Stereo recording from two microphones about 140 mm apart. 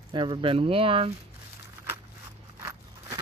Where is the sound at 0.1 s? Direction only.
35° right (ahead or behind).